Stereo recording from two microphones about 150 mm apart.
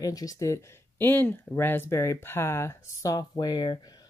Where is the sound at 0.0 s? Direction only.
25° left (ahead or behind).